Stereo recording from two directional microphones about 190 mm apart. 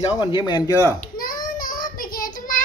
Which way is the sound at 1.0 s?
50° left (ahead or behind).